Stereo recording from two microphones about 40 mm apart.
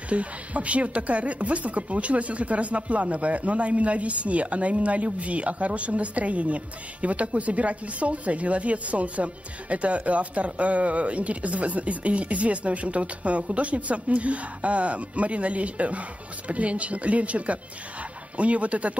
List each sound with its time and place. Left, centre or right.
0.1 s speech: right